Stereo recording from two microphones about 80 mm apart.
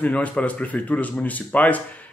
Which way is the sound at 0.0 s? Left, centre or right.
Centre.